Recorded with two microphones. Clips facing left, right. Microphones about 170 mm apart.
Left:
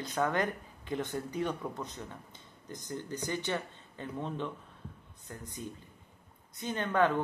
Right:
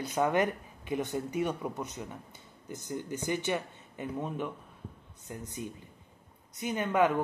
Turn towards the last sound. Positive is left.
turn(degrees=-15)  # may be behind; listen again after turning